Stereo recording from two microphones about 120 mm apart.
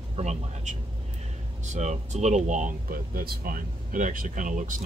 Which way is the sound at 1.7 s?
75° right (ahead or behind).